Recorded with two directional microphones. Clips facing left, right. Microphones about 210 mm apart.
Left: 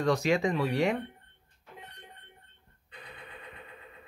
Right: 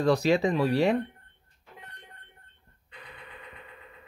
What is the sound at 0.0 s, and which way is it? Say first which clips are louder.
Speech: right 3 dB; 35° right (ahead or behind).